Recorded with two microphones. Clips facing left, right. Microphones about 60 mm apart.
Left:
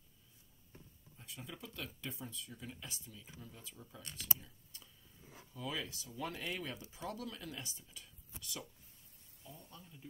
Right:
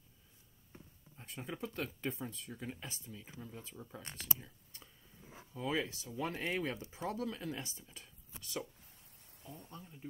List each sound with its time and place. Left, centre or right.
1.1 s speech: right
9.8 s speech: right